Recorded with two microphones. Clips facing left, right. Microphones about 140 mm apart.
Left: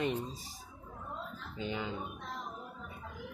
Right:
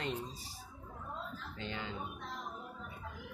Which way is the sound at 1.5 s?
15° left (ahead or behind).